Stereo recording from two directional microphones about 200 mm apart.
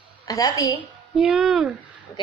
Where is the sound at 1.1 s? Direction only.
5° right (ahead or behind).